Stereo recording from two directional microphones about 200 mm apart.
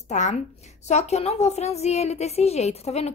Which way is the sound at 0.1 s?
35° left (ahead or behind).